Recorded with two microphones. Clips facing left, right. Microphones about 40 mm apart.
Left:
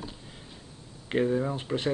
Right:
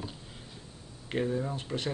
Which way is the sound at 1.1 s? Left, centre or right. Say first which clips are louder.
Left 5 dB; centre.